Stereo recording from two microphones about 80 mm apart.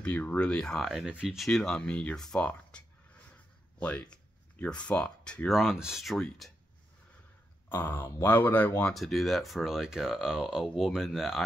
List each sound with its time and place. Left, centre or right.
0.0 s speech: centre
1.5 s speech: centre
3.8 s speech: centre
5.5 s speech: centre
6.1 s speech: centre
7.7 s speech: left
8.9 s speech: centre